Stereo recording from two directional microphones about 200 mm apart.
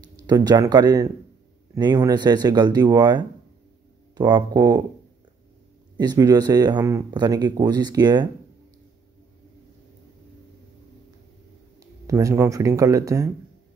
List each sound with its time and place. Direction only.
0.0 s speech: 20° right (ahead or behind)
5.9 s speech: 20° right (ahead or behind)
12.1 s speech: 15° right (ahead or behind)